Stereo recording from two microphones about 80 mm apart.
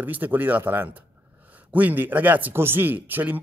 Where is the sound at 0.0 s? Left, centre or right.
Right.